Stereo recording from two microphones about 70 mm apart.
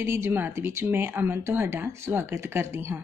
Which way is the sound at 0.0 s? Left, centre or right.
Right.